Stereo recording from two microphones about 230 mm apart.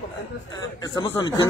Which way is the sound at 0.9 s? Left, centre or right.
Centre.